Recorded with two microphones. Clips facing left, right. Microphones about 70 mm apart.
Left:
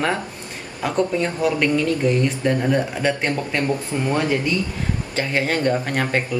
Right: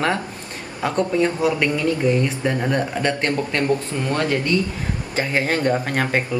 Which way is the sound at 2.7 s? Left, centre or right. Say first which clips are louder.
Left 1 dB; centre.